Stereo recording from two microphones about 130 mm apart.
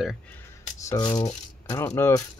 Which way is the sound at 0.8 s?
30° left (ahead or behind).